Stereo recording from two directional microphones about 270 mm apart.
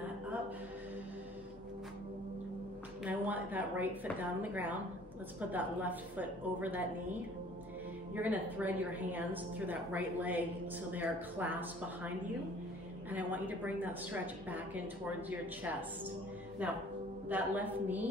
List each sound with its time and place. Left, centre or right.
3.0 s a woman's voice: centre
8.1 s a woman's voice: centre
13.1 s a woman's voice: centre